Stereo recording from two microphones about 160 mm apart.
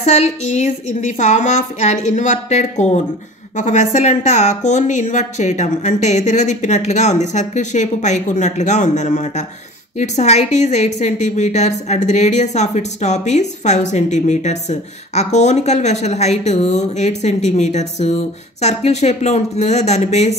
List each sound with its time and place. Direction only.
0.0 s a woman's voice: 45° left (ahead or behind)